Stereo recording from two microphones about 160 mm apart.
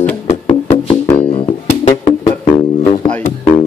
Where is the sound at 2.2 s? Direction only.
40° left (ahead or behind).